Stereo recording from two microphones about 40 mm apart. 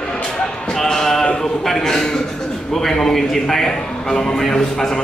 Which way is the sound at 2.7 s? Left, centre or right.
Centre.